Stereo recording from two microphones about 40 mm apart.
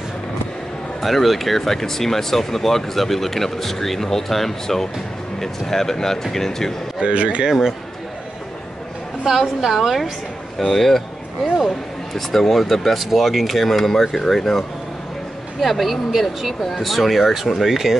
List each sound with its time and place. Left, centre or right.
1.0 s speech: centre
7.0 s speech: right
9.2 s a woman's voice: centre
10.6 s speech: centre
15.6 s a woman's voice: centre